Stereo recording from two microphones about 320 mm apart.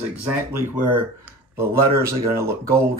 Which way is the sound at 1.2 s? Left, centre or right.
Centre.